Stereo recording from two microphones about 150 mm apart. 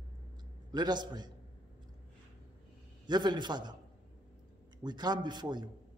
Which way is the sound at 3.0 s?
30° right (ahead or behind).